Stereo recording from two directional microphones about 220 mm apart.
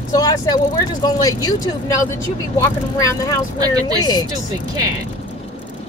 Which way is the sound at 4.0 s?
20° left (ahead or behind).